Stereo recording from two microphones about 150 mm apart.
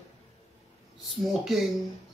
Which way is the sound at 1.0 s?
Centre (ahead or behind).